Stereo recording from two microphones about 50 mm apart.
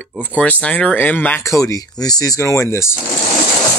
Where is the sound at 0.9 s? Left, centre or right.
Left.